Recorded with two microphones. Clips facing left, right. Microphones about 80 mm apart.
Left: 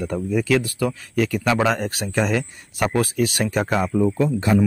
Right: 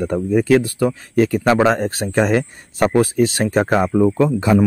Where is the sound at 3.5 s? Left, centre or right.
Right.